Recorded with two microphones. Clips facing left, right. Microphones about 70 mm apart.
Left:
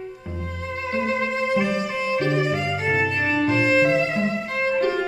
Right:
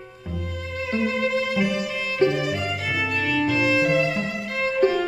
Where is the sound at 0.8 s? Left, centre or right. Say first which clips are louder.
Even; left.